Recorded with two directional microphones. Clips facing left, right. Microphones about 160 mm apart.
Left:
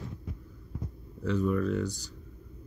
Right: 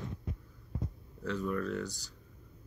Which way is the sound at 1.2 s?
10° left (ahead or behind).